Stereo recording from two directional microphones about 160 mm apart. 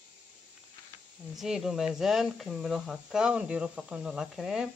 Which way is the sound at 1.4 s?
Centre (ahead or behind).